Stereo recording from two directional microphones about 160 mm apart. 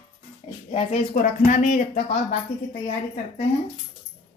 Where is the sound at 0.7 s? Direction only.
50° left (ahead or behind).